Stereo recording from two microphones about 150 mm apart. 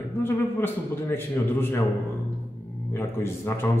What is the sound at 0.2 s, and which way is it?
A man's voice, 15° left (ahead or behind).